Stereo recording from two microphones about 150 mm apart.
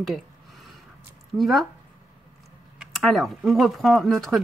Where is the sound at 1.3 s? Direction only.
Centre (ahead or behind).